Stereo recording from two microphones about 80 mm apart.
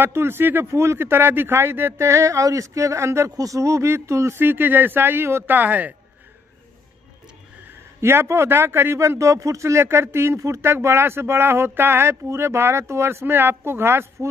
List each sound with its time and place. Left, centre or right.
0.0 s a man's voice: right
8.0 s a man's voice: right